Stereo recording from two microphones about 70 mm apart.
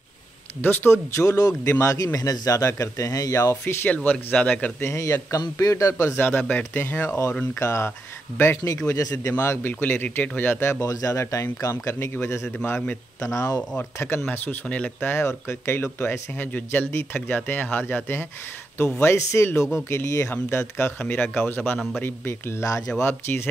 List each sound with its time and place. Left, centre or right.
0.6 s speech: left
1.1 s a man's voice: left
2.1 s speech: left
3.9 s a man's voice: left
4.8 s a man's voice: left
5.9 s a man's voice: left
7.1 s a man's voice: left
9.4 s a man's voice: left
10.6 s speech: left
10.9 s a man's voice: left
13.9 s a man's voice: left
15.1 s a man's voice: left
20.5 s a man's voice: left